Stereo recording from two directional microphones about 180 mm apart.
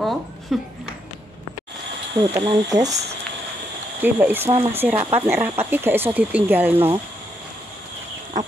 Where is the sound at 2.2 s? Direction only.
25° right (ahead or behind).